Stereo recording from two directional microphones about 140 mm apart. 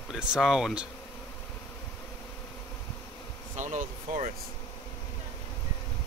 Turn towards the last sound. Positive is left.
turn(degrees=-60)  # may be behind; listen again after turning